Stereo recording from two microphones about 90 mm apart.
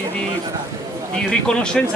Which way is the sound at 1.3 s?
10° left (ahead or behind).